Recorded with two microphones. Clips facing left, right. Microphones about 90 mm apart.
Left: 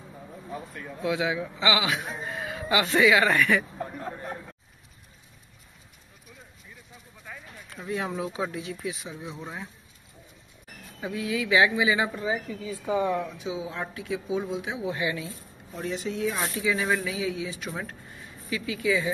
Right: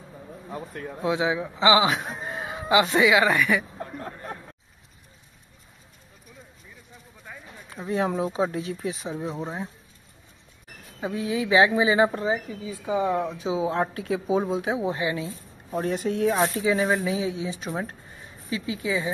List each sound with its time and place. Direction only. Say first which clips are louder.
1.0 s a man's voice: right 2 dB; 25° right (ahead or behind); by 3.6 s 5° right (ahead or behind)
7.7 s speech: right 5 dB; 30° right (ahead or behind)
11.0 s speech: right 3 dB; 30° right (ahead or behind)
12.4 s a man's voice: even; 20° right (ahead or behind)
13.2 s speech: right 6 dB; 35° right (ahead or behind)
14.9 s a man's voice: right 3 dB; 30° right (ahead or behind)
15.7 s speech: right 6 dB; 50° right (ahead or behind)
16.3 s a man's voice: right 5 dB; 35° right (ahead or behind)